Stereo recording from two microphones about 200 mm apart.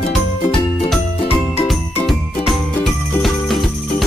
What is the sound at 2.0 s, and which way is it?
Music, centre (ahead or behind).